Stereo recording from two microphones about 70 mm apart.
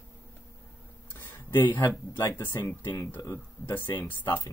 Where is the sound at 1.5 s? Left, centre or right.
Left.